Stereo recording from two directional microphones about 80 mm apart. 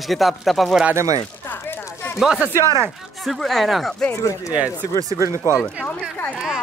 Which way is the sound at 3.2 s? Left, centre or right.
Centre.